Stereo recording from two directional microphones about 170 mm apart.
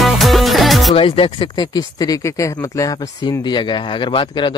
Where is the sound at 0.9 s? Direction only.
30° left (ahead or behind).